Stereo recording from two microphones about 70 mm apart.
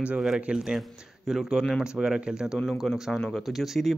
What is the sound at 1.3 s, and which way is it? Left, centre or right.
Speech, centre.